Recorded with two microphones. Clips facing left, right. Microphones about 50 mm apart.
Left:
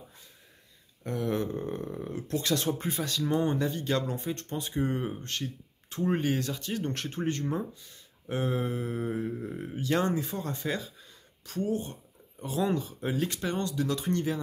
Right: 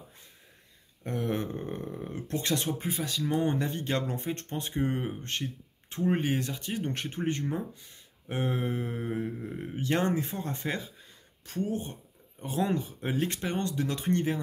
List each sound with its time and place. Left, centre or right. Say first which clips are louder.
1.0 s a sound: left 1 dB; right
2.0 s speech: left 1 dB; right
2.8 s speech: left 1 dB; centre
3.3 s speech: even; right
9.8 s speech: even; right